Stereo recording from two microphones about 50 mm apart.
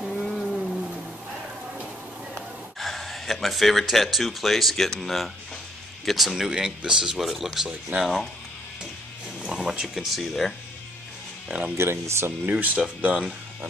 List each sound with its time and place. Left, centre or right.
0.0 s a sound: centre
2.8 s speech: centre
7.2 s speech: centre
7.9 s speech: right
9.4 s speech: centre
11.4 s speech: centre
11.7 s speech: right
12.4 s speech: right